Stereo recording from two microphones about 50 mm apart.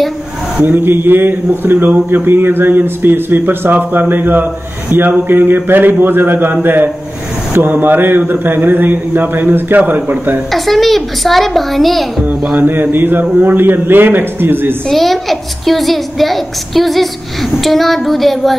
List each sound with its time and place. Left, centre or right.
0.7 s a man's voice: right
10.5 s a child's voice: centre
12.6 s a man's voice: right
14.9 s a child's voice: centre